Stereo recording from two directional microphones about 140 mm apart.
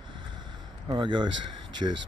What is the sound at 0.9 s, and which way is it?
Speech, 35° right (ahead or behind).